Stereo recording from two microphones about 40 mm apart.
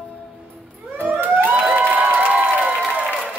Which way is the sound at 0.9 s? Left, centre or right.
Right.